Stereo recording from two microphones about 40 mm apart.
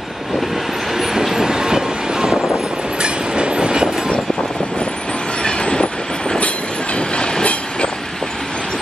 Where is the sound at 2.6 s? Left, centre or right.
Right.